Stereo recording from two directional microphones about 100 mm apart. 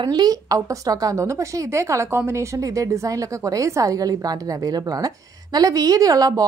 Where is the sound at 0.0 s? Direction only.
45° right (ahead or behind).